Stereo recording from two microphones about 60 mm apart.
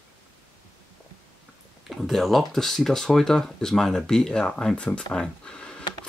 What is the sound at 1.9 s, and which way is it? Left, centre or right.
Speech, centre.